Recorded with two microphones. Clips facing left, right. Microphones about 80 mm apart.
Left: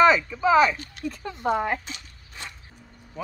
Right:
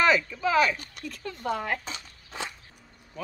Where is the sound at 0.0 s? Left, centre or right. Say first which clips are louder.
Left 5 dB; centre.